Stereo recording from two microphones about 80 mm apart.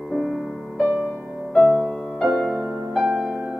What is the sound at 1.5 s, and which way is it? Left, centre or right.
Music, centre.